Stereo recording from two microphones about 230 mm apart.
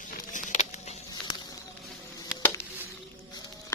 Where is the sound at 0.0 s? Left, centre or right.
Left.